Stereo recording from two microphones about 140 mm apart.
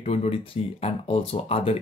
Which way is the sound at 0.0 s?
45° left (ahead or behind).